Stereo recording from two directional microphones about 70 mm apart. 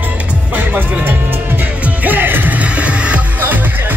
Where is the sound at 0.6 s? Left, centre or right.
Right.